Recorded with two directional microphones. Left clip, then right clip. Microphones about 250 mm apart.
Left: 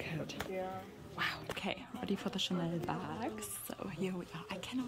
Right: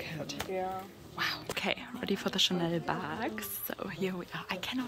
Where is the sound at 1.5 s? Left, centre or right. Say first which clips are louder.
Right 7 dB; centre.